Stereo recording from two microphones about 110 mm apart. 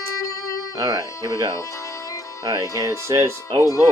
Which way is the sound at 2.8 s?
30° right (ahead or behind).